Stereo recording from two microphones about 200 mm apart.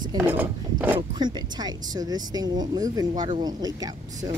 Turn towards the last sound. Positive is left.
turn(degrees=-20)  # may be behind; listen again after turning